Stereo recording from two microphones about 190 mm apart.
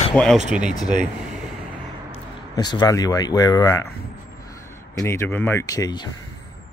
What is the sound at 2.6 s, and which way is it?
Speech, 20° left (ahead or behind).